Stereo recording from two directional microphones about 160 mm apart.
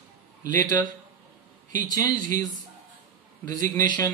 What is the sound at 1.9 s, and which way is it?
Speech, 25° left (ahead or behind).